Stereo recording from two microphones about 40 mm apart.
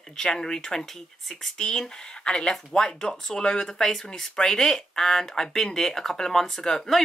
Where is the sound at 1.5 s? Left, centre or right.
Centre.